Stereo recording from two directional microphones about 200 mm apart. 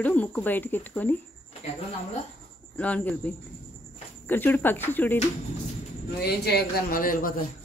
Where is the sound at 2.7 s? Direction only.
5° left (ahead or behind).